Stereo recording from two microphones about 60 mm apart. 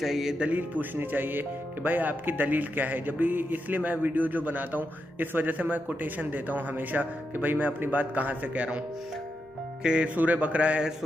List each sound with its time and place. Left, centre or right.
0.0 s speech: centre
0.5 s speech: right
9.8 s speech: centre